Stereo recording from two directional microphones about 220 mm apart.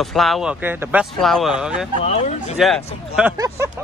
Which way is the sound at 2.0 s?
25° left (ahead or behind).